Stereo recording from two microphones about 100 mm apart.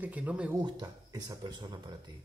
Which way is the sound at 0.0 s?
15° right (ahead or behind).